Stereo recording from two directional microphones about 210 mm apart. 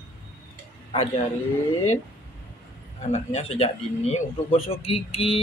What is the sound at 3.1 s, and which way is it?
Speech, 30° left (ahead or behind).